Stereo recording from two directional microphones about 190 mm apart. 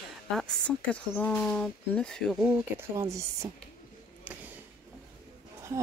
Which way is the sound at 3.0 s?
15° right (ahead or behind).